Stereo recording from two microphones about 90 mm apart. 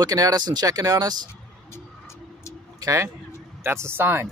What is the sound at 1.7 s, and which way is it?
Vehicle, 30° left (ahead or behind).